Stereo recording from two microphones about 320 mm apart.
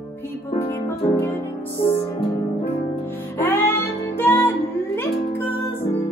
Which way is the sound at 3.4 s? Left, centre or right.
Centre.